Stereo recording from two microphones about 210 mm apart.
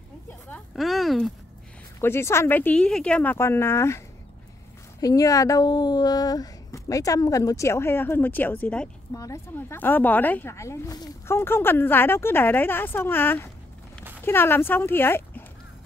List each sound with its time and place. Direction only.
0.5 s speech: centre (ahead or behind)
2.0 s speech: 10° left (ahead or behind)
5.0 s speech: 15° left (ahead or behind)